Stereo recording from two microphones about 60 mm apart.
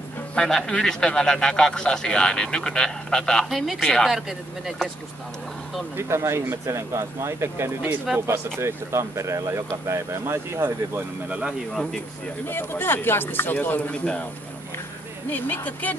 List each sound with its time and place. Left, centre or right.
0.4 s a man's voice: centre
3.4 s a man's voice: centre
4.1 s speech: centre
5.9 s speech: right
11.2 s speech: right
11.7 s a man's voice: centre
12.4 s speech: left
15.2 s speech: left